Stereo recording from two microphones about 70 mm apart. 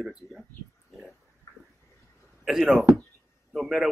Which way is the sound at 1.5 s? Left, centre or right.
Left.